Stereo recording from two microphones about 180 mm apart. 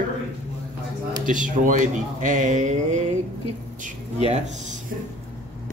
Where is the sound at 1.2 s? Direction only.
45° right (ahead or behind).